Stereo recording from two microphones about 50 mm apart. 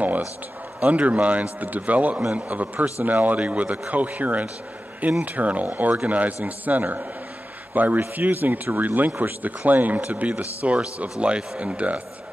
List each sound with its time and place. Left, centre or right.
0.7 s speech: right